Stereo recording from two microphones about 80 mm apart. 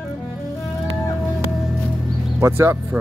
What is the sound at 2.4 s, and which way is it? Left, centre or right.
Speech, right.